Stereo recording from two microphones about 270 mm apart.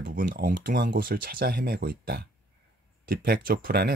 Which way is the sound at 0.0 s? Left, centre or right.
Right.